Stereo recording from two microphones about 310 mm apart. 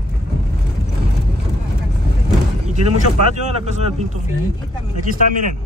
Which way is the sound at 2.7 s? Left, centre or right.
Right.